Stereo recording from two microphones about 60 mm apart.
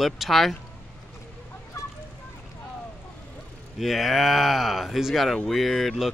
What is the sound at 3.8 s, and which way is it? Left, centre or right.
Speech, centre.